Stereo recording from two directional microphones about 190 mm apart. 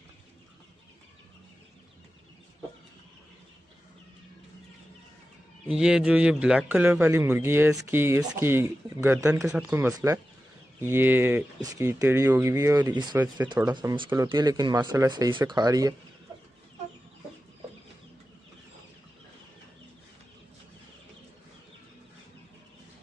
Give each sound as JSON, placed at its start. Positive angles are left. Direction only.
{"t": 5.8, "sound": "speech", "side_deg": -5}